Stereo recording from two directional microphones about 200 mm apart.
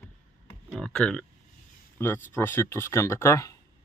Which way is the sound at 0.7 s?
5° left (ahead or behind).